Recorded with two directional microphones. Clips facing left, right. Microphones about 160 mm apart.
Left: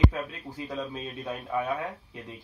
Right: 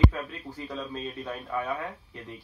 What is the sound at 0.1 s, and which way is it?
A man's voice, 15° left (ahead or behind).